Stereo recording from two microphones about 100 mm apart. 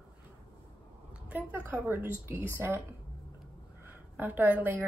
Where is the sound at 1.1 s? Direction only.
15° right (ahead or behind).